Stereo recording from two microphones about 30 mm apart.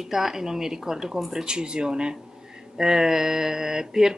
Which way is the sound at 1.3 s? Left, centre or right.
Right.